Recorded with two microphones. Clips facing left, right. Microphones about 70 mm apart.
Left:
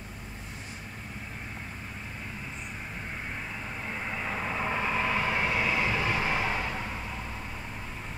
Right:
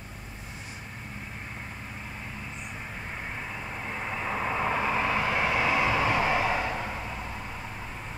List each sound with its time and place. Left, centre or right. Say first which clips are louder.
4.0 s vehicle: right 3 dB; centre
4.4 s vehicle: right 4 dB; centre